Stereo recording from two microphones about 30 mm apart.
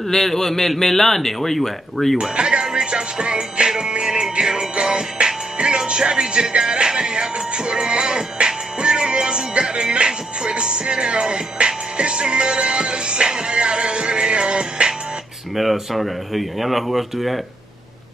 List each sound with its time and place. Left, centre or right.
0.1 s a man's voice: centre
2.3 s music: right
15.5 s speech: centre